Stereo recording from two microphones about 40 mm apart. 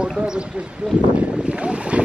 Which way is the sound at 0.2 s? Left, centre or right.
Right.